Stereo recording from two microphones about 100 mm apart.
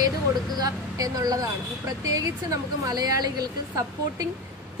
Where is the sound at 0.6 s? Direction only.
40° right (ahead or behind).